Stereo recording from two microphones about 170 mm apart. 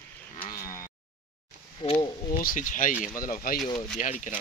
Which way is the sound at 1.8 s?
35° left (ahead or behind).